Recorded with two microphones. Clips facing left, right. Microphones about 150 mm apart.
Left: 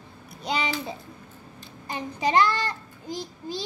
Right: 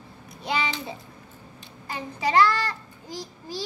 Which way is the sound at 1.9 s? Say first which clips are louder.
Left 1 dB; 20° left (ahead or behind).